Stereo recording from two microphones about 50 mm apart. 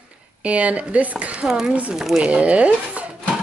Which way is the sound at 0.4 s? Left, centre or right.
Right.